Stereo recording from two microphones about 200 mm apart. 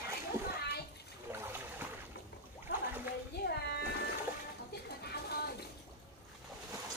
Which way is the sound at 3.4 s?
55° left (ahead or behind).